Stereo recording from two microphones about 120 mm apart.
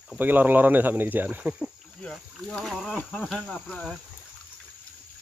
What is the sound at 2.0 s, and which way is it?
Speech, 5° left (ahead or behind).